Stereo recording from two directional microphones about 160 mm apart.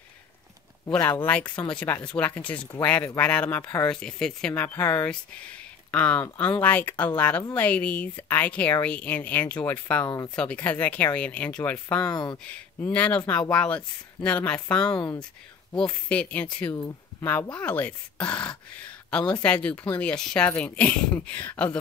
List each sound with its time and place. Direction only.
0.9 s speech: 10° left (ahead or behind)
10.0 s speech: 25° left (ahead or behind)
10.3 s speech: 10° left (ahead or behind)
12.0 s speech: 25° left (ahead or behind)
12.9 s speech: 10° left (ahead or behind)
16.7 s speech: 20° left (ahead or behind)